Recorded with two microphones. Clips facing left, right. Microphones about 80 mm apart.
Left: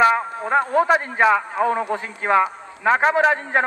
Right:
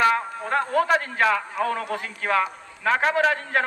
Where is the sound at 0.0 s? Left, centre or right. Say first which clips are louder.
Left 4 dB; centre.